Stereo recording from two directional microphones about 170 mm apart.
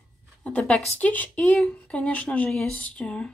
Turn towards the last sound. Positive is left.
turn(degrees=5)  # may be behind; listen again after turning